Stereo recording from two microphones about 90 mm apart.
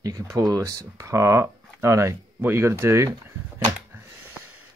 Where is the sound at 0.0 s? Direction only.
40° right (ahead or behind); by 4.4 s 20° right (ahead or behind).